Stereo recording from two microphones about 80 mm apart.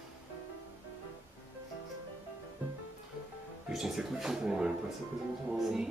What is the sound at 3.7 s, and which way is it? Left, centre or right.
Speech, centre.